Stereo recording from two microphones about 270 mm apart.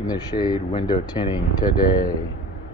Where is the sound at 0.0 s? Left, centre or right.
Centre.